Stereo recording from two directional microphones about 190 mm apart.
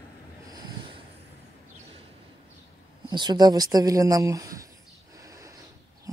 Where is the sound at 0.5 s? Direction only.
20° right (ahead or behind).